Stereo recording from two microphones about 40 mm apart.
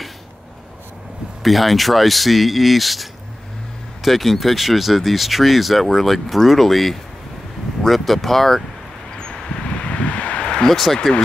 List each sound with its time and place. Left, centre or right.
1.4 s speech: centre
9.8 s vehicle: left; by 11.0 s centre